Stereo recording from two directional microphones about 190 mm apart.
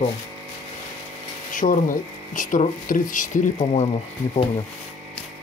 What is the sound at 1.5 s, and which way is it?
Speech, 45° left (ahead or behind).